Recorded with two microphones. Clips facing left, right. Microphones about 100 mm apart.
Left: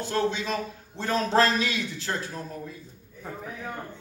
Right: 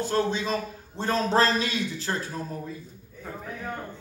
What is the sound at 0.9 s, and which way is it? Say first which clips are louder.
Speech: even; 35° right (ahead or behind).